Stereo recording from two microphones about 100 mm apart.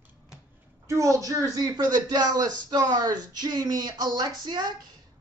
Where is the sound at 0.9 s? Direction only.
30° right (ahead or behind).